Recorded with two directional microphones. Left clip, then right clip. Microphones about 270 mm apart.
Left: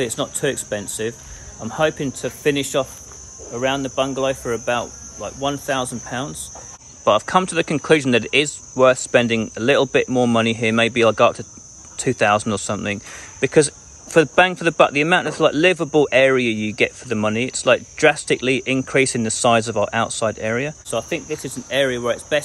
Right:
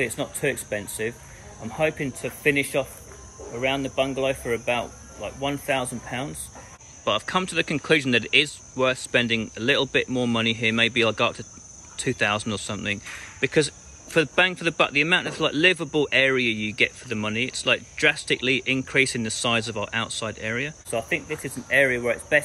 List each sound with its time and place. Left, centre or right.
0.4 s speech: centre
7.1 s speech: centre